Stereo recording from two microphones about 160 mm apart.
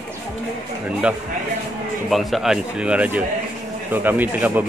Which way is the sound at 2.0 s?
Centre (ahead or behind).